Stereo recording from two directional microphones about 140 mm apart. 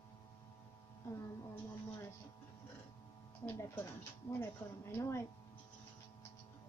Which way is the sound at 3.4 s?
20° left (ahead or behind).